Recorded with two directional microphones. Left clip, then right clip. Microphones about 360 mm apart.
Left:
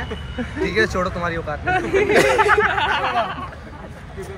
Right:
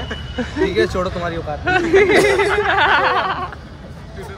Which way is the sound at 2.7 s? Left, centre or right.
Centre.